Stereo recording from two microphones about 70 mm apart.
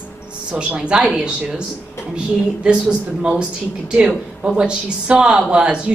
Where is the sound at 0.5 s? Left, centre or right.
Centre.